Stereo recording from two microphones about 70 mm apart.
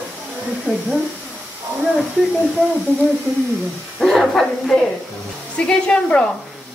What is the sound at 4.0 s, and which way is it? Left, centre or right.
Speech, centre.